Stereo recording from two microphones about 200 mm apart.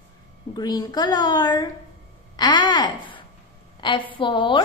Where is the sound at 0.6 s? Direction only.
20° left (ahead or behind).